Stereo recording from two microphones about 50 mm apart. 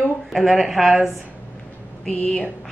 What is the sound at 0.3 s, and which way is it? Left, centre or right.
Speech, centre.